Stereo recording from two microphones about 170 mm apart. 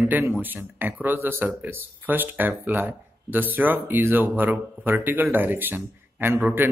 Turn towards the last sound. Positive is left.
turn(degrees=-10)  # may be behind; listen again after turning